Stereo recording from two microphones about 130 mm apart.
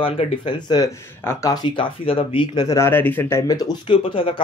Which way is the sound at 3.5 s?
30° left (ahead or behind).